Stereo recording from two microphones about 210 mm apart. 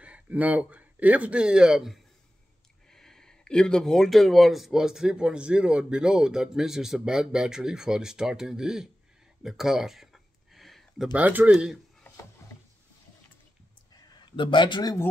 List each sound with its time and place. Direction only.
0.0 s speech: 5° right (ahead or behind)
9.4 s a sound: centre (ahead or behind)
11.1 s speech: 5° right (ahead or behind)
14.3 s speech: 25° left (ahead or behind)